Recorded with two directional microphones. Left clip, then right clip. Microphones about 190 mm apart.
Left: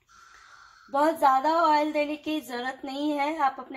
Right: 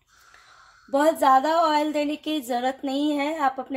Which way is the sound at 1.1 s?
55° right (ahead or behind).